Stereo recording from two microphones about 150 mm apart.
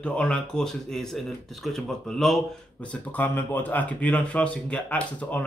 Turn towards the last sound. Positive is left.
turn(degrees=10)  # may be behind; listen again after turning